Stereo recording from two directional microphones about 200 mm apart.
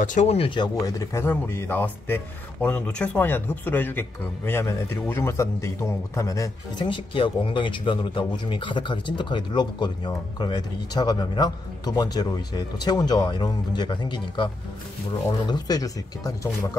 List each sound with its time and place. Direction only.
0.0 s speech: 40° left (ahead or behind)
0.8 s a man's voice: 15° left (ahead or behind)